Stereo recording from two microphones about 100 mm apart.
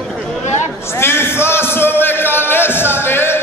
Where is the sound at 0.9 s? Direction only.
25° left (ahead or behind).